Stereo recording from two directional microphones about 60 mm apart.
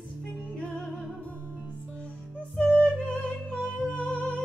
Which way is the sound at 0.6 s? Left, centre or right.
Centre.